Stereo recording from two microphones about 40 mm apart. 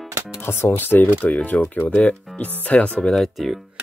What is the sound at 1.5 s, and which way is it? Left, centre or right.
Speech, left.